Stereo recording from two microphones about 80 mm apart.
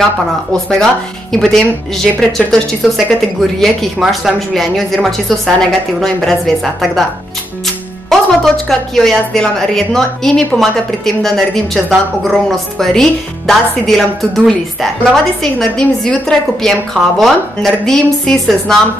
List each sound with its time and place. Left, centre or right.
0.5 s speech: centre